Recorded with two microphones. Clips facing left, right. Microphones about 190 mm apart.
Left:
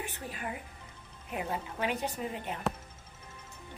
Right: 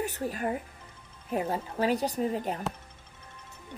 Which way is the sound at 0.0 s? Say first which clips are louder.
Right 8 dB; 40° right (ahead or behind).